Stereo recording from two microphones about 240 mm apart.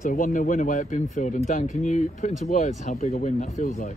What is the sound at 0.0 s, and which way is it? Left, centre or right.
Speech, left.